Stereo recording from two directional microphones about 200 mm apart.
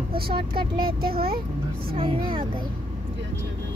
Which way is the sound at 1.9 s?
25° right (ahead or behind).